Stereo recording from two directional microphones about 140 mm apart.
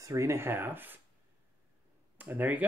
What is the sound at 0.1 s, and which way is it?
Speech, 20° right (ahead or behind).